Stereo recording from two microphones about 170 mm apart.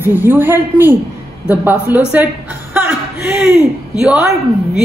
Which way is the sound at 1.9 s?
10° right (ahead or behind).